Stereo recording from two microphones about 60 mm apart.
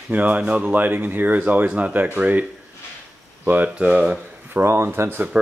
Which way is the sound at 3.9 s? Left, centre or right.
Centre.